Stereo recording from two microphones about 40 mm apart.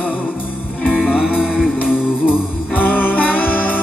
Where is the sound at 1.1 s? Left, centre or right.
Centre.